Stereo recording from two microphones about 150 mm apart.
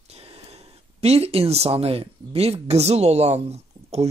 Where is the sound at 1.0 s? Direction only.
45° right (ahead or behind).